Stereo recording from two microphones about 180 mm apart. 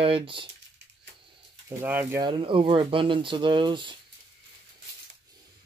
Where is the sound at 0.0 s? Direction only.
30° right (ahead or behind).